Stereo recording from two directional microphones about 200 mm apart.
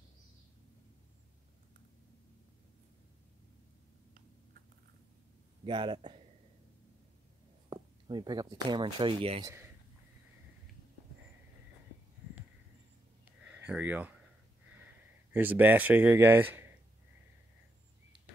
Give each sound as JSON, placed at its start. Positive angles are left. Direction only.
{"t": 5.7, "sound": "speech", "side_deg": -25}
{"t": 7.7, "sound": "speech", "side_deg": -20}
{"t": 13.5, "sound": "speech", "side_deg": -5}
{"t": 15.3, "sound": "speech", "side_deg": -10}